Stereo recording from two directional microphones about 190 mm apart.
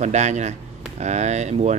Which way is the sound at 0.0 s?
35° right (ahead or behind).